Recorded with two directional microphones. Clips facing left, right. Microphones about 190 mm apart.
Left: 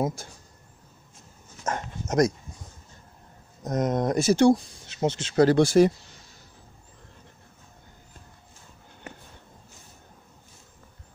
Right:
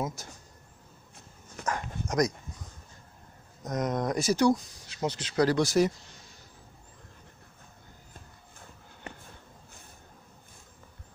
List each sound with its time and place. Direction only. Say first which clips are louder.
0.0 s speech: left 6 dB; 30° left (ahead or behind)
1.6 s dog: left 2 dB; 25° left (ahead or behind)
3.6 s speech: left 5 dB; 25° left (ahead or behind)